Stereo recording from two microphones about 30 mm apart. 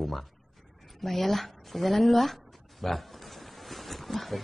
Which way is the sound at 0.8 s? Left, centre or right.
Centre.